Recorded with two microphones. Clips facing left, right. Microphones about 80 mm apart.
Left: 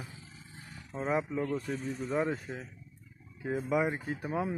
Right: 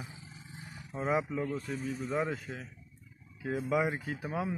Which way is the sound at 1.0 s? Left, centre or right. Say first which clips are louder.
Even; centre.